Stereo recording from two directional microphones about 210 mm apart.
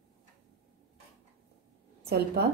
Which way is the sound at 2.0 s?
50° right (ahead or behind).